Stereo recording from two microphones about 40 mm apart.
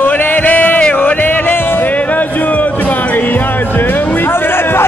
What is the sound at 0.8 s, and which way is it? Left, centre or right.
Music, left.